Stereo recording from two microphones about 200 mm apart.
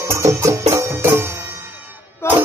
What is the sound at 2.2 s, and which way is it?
Music, 10° left (ahead or behind).